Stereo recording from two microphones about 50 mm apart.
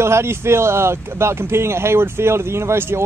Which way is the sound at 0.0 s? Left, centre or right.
Right.